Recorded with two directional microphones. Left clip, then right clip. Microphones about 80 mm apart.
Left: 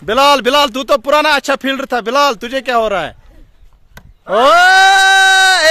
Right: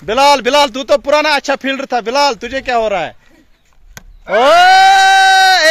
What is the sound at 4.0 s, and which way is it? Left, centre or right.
Wood, right.